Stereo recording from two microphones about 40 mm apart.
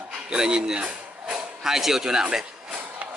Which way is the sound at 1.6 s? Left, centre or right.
Centre.